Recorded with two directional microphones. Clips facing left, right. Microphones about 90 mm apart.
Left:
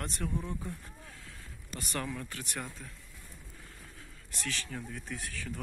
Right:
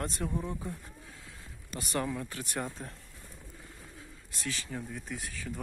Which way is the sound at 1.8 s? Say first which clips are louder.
Right 4 dB; 20° right (ahead or behind).